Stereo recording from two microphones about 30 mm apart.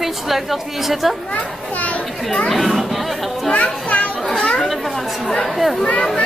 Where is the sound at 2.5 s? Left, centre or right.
Centre.